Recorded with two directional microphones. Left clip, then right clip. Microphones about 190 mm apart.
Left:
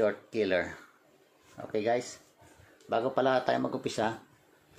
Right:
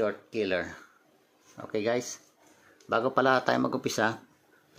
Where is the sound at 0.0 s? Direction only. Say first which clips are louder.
Left 1 dB; centre (ahead or behind).